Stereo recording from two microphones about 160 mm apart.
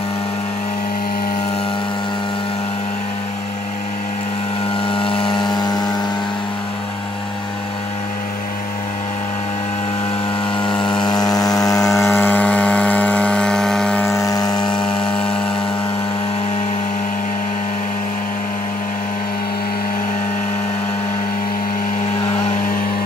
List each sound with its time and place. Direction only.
4.8 s a sound: 35° left (ahead or behind)
11.1 s vehicle: 25° left (ahead or behind); by 14.0 s 5° left (ahead or behind)
14.0 s helicopter: 20° left (ahead or behind)
14.7 s helicopter: 5° left (ahead or behind)